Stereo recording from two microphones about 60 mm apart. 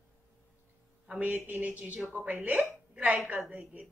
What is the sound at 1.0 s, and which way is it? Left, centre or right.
A woman's voice, right.